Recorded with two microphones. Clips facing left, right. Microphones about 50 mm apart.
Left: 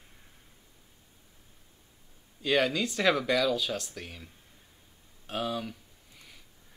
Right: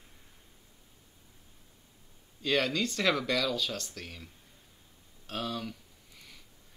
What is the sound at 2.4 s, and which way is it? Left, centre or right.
Speech, centre.